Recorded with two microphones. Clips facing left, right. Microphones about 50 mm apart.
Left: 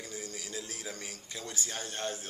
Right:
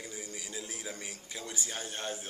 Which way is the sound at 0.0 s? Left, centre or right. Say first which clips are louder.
Left 1 dB; centre.